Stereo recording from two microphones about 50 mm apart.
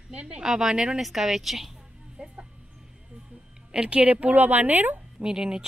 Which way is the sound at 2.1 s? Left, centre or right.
Centre.